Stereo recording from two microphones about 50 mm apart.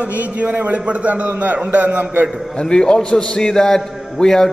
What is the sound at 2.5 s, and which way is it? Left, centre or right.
A man's voice, centre.